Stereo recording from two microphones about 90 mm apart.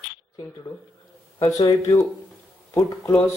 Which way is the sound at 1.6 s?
40° left (ahead or behind).